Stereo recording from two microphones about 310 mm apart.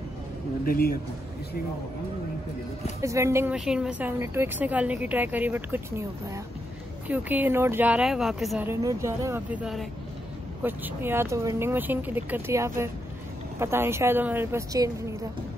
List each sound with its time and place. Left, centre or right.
0.7 s a man's voice: left
3.0 s a woman's voice: centre